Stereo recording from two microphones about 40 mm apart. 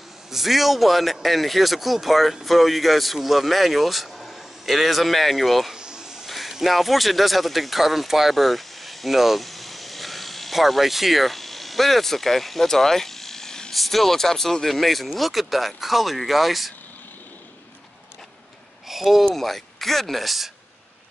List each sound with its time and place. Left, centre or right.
0.3 s speech: centre
5.8 s snake: centre
6.2 s a sound: centre
6.5 s speech: centre
18.9 s speech: centre
19.4 s speech: centre